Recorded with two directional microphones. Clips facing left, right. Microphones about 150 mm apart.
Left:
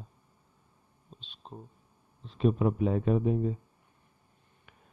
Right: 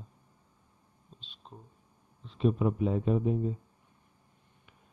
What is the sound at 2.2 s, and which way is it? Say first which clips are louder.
Speech: left 1 dB; 50° left (ahead or behind).